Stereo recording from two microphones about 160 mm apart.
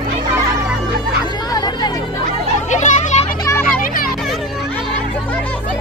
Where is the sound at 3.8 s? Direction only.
60° left (ahead or behind).